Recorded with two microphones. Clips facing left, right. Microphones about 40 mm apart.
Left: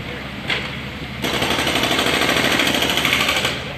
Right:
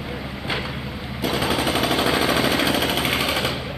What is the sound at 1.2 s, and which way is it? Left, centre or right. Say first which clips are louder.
Jackhammer: left 2 dB; left.